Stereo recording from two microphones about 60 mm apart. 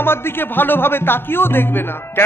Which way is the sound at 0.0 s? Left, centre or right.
Left.